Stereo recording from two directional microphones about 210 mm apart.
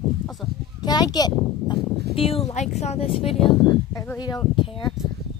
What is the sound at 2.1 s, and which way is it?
Speech, 25° left (ahead or behind).